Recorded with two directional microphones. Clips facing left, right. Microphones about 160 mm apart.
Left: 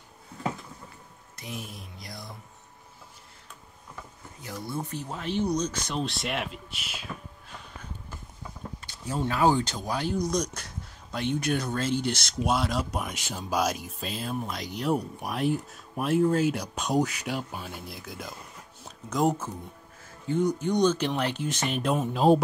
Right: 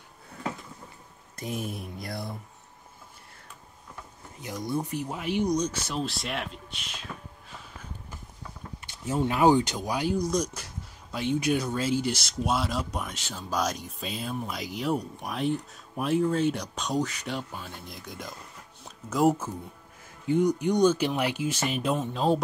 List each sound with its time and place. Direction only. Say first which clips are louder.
1.3 s mantra: right 6 dB; 45° right (ahead or behind)
4.4 s speech: right 4 dB; 15° right (ahead or behind); by 7.1 s 5° left (ahead or behind)
8.8 s speech: right 3 dB; 20° right (ahead or behind); by 13.0 s centre (ahead or behind)
13.0 s speech: left 2 dB; 15° left (ahead or behind)